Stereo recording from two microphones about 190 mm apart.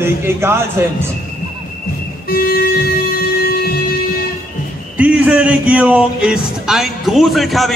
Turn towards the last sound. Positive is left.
turn(degrees=0)  # may be behind; listen again after turning